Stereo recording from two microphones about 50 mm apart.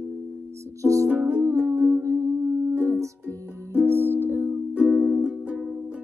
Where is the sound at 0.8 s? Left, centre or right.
Right.